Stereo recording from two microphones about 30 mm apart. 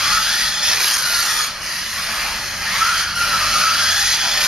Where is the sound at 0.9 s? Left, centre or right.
Centre.